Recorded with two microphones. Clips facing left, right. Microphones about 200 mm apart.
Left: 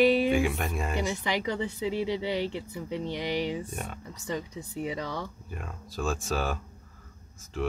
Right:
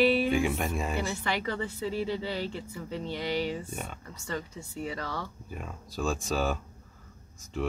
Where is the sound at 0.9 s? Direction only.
15° left (ahead or behind).